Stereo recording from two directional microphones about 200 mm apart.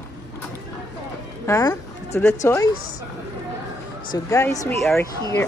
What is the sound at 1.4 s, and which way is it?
A woman's voice, 15° left (ahead or behind).